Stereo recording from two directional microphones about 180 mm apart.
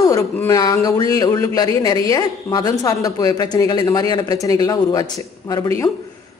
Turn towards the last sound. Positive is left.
turn(degrees=20)  # may be behind; listen again after turning